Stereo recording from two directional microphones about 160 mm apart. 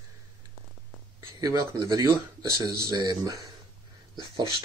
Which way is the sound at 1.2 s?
25° right (ahead or behind).